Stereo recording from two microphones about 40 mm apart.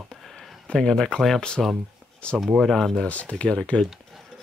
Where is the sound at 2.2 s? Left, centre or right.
Left.